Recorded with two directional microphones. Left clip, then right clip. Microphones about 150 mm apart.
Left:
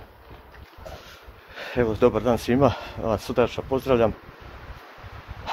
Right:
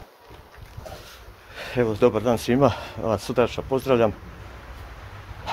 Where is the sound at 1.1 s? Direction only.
30° right (ahead or behind).